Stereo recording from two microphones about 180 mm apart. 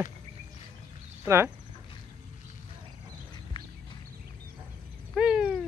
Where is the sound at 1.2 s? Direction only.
15° right (ahead or behind).